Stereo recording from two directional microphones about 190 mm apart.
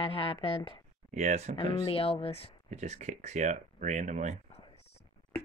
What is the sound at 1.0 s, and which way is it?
Speech, 40° right (ahead or behind).